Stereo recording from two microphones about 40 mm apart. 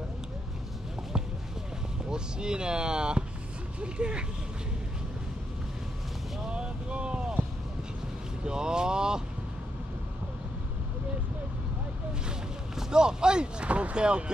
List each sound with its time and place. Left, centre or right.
2.0 s speech: right
6.5 s boat: right
8.5 s vehicle: centre
12.7 s speech: centre
13.7 s speech: right